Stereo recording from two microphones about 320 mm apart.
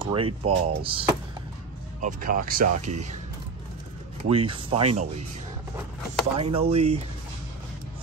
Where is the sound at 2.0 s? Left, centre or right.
Right.